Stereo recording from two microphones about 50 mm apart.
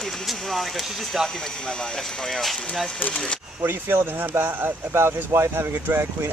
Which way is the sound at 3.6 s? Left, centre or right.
Right.